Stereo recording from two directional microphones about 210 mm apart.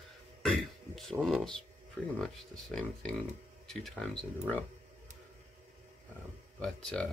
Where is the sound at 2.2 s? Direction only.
5° left (ahead or behind).